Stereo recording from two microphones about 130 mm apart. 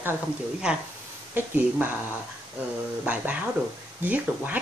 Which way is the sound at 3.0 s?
10° right (ahead or behind).